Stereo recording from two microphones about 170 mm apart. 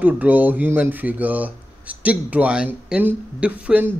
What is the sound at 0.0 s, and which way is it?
Speech, 10° right (ahead or behind).